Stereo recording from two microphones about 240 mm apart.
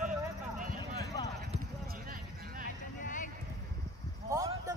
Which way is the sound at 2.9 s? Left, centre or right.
Left.